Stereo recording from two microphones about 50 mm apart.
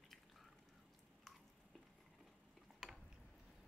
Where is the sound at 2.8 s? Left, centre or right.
Centre.